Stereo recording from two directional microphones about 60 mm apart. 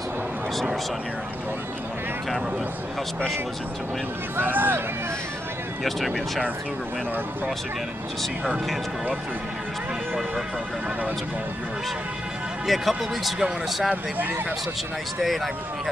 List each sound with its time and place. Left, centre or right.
4.4 s speech: right
5.9 s speech: centre
8.2 s speech: centre
12.6 s speech: centre
15.2 s speech: centre